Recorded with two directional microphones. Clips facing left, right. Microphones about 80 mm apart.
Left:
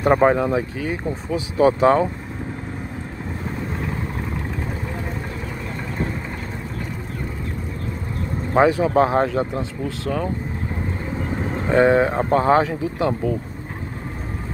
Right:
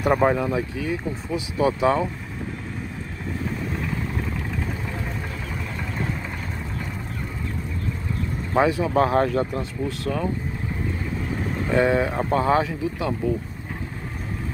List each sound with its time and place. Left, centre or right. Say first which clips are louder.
0.0 s speech: left 4 dB; left
8.5 s speech: left 4 dB; left
11.5 s speech: left 5 dB; left